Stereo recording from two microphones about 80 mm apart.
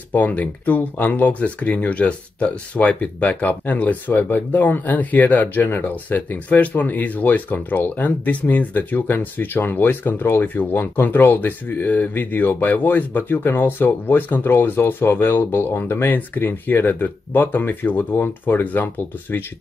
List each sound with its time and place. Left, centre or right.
0.1 s speech: centre